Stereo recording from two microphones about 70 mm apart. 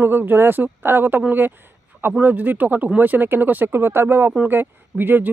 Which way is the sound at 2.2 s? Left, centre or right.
Right.